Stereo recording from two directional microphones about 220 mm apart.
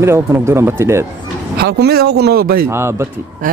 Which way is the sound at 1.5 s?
45° right (ahead or behind).